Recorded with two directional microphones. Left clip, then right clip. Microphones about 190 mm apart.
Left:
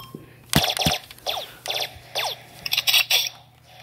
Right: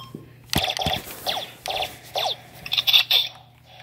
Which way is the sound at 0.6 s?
30° left (ahead or behind).